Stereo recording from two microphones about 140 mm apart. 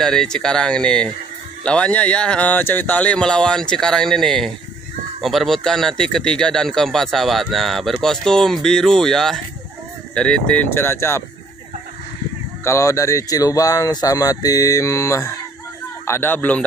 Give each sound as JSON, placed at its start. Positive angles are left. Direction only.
{"t": 0.0, "sound": "speech", "side_deg": 5}
{"t": 12.6, "sound": "speech", "side_deg": 20}